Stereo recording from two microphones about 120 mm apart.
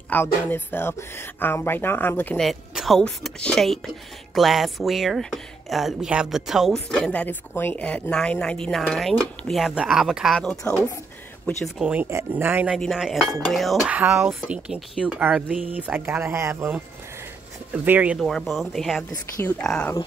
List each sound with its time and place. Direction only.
0.1 s speech: 15° left (ahead or behind)
2.3 s speech: centre (ahead or behind)
9.6 s speech: 5° right (ahead or behind)
11.6 s speech: 10° right (ahead or behind)
12.1 s speech: 20° right (ahead or behind)
12.7 s speech: centre (ahead or behind)
13.8 s speech: 15° right (ahead or behind)
17.8 s speech: 15° right (ahead or behind)
18.2 s speech: centre (ahead or behind)